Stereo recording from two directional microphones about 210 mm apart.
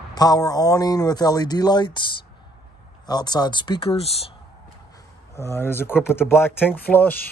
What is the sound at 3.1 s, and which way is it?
Speech, 20° left (ahead or behind).